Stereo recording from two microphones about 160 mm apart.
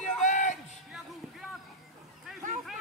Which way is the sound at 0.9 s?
Centre (ahead or behind).